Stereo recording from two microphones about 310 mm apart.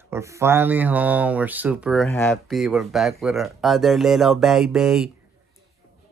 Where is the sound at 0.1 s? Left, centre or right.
Centre.